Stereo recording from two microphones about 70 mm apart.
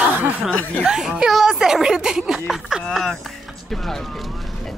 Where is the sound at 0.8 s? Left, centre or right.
Centre.